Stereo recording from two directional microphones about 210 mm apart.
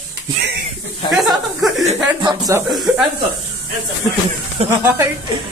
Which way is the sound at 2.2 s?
20° right (ahead or behind).